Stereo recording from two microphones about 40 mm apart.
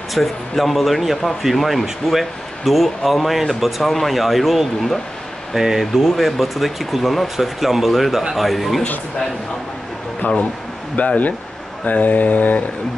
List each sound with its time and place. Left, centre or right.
0.1 s speech: centre
11.0 s speech: left